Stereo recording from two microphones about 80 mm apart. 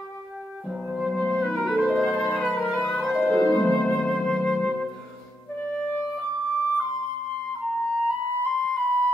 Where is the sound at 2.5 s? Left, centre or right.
Left.